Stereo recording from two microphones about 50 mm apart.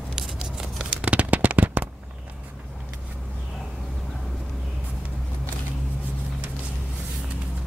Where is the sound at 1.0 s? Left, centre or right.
Right.